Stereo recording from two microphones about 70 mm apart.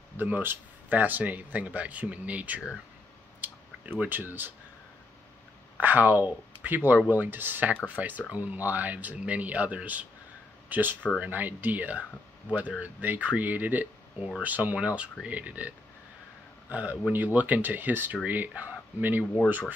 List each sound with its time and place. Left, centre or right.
0.2 s speech: right
3.3 s a sound: right
4.0 s speech: right
5.8 s speech: right
16.7 s speech: right